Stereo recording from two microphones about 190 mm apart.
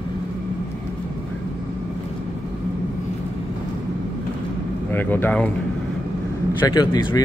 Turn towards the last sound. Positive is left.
turn(degrees=20)  # may be behind; listen again after turning